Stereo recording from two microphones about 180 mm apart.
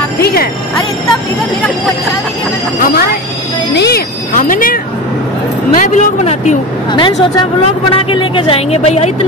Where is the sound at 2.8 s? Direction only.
55° left (ahead or behind).